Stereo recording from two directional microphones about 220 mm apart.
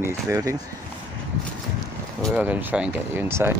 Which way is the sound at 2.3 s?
5° right (ahead or behind).